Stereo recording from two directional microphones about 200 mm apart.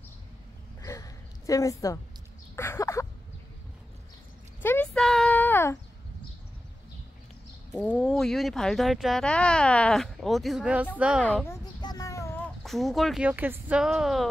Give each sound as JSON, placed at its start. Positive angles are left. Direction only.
{"t": 0.8, "sound": "a sound", "side_deg": 15}
{"t": 4.6, "sound": "a sound", "side_deg": 10}
{"t": 7.7, "sound": "speech", "side_deg": 5}
{"t": 11.2, "sound": "speech", "side_deg": 5}
{"t": 11.8, "sound": "child singing", "side_deg": 20}
{"t": 12.6, "sound": "speech", "side_deg": 0}